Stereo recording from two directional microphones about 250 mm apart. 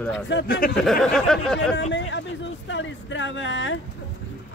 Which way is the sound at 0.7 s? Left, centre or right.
Centre.